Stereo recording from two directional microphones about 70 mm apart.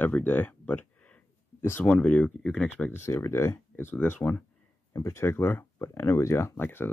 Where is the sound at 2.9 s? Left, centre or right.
Left.